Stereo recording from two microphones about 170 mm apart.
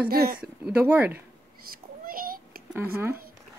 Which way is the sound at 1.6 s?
60° right (ahead or behind).